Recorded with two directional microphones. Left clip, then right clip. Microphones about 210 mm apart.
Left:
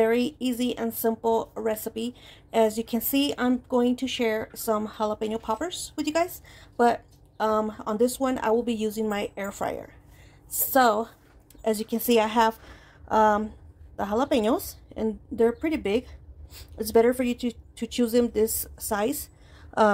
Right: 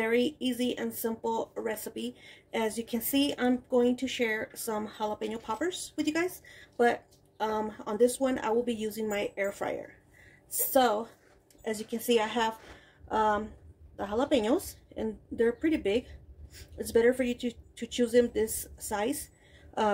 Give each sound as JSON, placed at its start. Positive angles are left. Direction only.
{"t": 0.0, "sound": "speech", "side_deg": 35}